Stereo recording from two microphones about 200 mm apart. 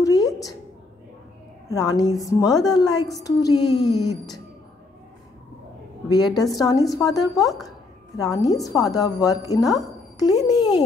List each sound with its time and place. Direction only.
0.0 s a sound: 20° left (ahead or behind)
1.7 s a woman's voice: 20° left (ahead or behind)
6.0 s a woman's voice: 20° left (ahead or behind)